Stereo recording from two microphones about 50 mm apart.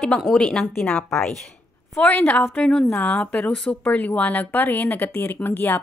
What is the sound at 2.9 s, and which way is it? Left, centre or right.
A woman's voice, left.